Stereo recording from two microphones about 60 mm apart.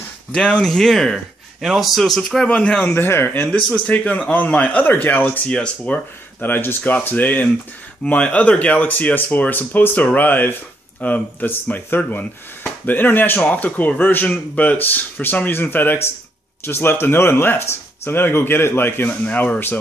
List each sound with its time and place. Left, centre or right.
0.3 s speech: centre
2.4 s speech: left
2.9 s speech: left
3.4 s speech: centre; by 5.4 s left
5.5 s speech: centre
6.4 s speech: left